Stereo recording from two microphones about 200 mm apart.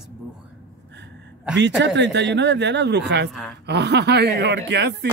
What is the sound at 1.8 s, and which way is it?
Speech, 60° right (ahead or behind).